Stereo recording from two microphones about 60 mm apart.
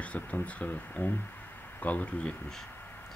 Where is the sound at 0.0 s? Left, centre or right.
Left.